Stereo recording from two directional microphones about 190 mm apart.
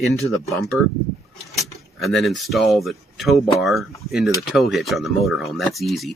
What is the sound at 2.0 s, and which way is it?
Speech, centre (ahead or behind).